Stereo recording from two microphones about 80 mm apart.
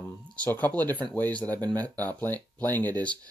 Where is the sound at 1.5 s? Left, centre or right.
Right.